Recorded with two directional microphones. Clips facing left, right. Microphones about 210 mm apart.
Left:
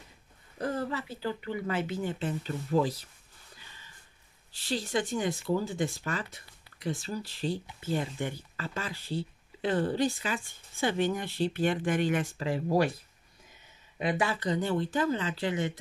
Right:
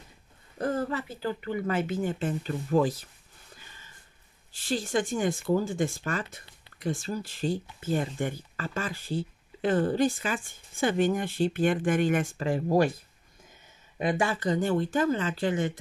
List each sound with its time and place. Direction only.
0.6 s speech: 45° right (ahead or behind)
4.5 s speech: 50° right (ahead or behind)
13.9 s speech: 45° right (ahead or behind)